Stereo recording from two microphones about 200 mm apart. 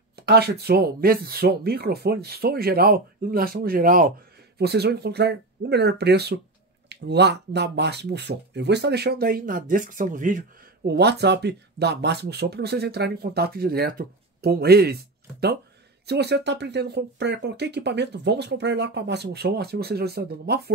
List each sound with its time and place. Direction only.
0.1 s speech: 55° right (ahead or behind)
4.6 s speech: 55° right (ahead or behind)
16.1 s speech: 55° right (ahead or behind)